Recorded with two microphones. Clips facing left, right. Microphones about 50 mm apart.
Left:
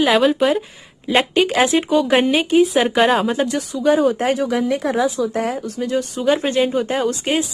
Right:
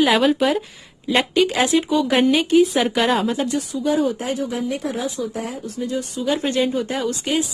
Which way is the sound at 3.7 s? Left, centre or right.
Left.